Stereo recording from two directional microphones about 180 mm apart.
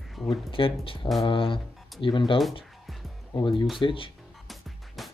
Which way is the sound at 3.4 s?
25° left (ahead or behind).